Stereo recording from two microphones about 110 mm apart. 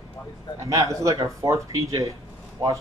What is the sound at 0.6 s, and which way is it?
Speech, 30° right (ahead or behind).